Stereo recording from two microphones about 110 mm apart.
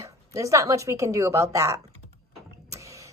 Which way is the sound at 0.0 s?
30° right (ahead or behind).